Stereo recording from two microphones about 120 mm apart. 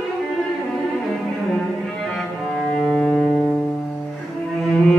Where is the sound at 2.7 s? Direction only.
5° left (ahead or behind).